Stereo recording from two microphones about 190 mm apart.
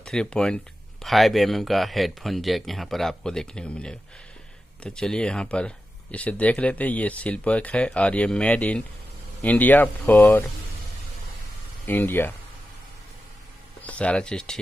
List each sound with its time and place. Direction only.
0.0 s speech: 5° left (ahead or behind)
11.8 s speech: 10° left (ahead or behind)
13.8 s speech: 5° left (ahead or behind)